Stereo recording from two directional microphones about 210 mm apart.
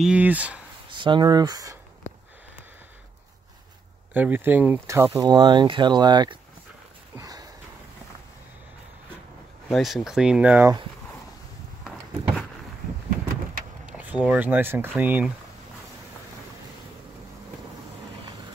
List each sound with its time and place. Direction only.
0.0 s speech: 5° right (ahead or behind)
0.9 s speech: 20° right (ahead or behind)
4.1 s speech: 10° right (ahead or behind)
7.2 s sniff: 15° right (ahead or behind)
9.7 s speech: centre (ahead or behind)
13.8 s speech: 5° right (ahead or behind)